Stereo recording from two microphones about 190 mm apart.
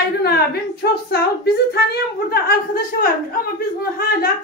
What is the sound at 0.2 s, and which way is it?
Speech, 55° left (ahead or behind).